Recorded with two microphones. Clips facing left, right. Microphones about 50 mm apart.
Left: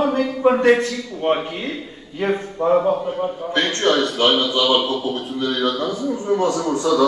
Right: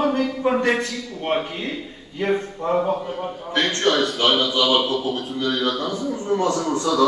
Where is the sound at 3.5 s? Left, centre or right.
Left.